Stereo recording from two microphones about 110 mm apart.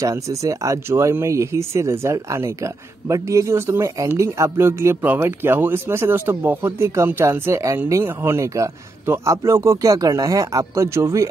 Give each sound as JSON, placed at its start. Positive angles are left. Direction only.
{"t": 0.0, "sound": "speech", "side_deg": -30}